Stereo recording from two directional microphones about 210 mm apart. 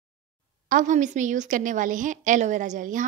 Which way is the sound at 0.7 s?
40° right (ahead or behind).